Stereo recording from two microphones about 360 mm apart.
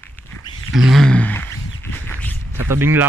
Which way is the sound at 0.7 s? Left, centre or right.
Centre.